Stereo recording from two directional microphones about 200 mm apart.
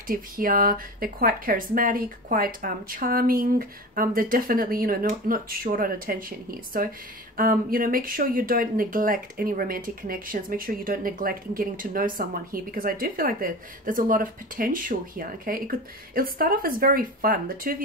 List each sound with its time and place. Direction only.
0.0 s speech: 45° right (ahead or behind)